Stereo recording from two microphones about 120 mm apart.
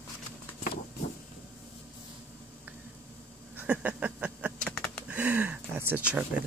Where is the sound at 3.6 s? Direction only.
15° right (ahead or behind).